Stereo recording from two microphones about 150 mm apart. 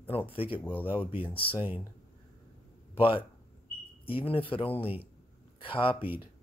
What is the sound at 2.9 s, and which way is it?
Speech, 35° left (ahead or behind).